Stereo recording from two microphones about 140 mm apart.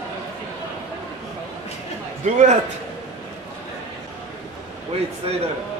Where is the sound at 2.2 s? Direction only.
55° right (ahead or behind).